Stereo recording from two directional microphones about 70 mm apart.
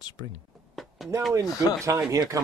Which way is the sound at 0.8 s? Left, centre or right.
Centre.